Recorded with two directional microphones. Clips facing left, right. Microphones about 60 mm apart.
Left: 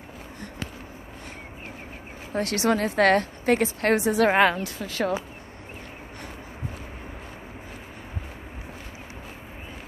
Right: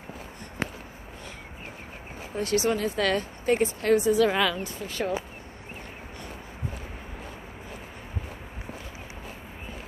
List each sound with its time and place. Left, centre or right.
2.3 s a woman's voice: left
4.3 s a woman's voice: left
4.6 s speech: left